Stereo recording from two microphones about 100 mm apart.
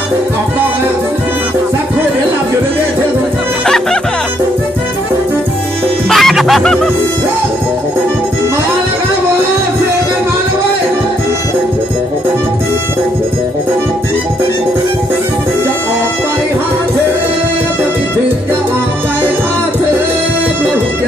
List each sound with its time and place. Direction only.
3.6 s music: 5° left (ahead or behind)
6.0 s music: centre (ahead or behind)